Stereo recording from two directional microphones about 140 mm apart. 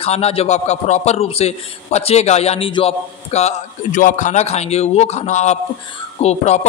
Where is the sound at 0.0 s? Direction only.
45° left (ahead or behind).